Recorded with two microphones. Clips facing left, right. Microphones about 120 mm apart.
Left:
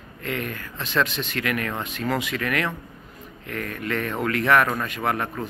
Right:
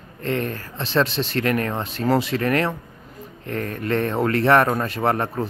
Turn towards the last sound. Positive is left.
turn(degrees=-35)  # may be behind; listen again after turning